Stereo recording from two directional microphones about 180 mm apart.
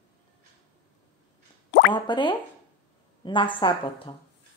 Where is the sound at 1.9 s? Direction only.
25° left (ahead or behind).